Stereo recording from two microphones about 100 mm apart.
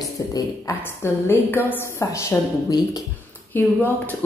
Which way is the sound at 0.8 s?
25° left (ahead or behind).